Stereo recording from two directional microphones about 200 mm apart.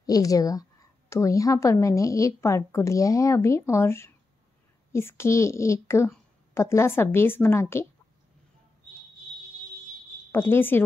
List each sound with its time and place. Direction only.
0.0 s a woman's voice: 15° left (ahead or behind)
10.3 s a woman's voice: 10° left (ahead or behind)